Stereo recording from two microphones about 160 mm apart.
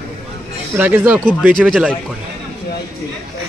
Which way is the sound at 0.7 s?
10° right (ahead or behind).